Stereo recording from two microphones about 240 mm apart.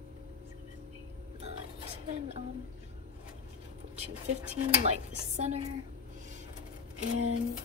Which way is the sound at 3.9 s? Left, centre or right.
Right.